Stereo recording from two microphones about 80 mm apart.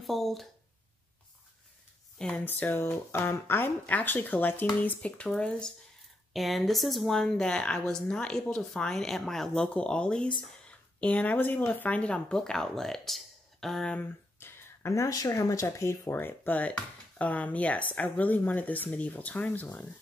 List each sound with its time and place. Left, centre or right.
0.0 s speech: centre
2.1 s speech: centre
2.4 s speech: left
6.3 s speech: centre
14.4 s speech: left; by 19.9 s centre